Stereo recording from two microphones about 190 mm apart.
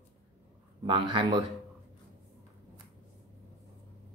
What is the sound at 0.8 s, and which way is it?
Speech, 25° right (ahead or behind).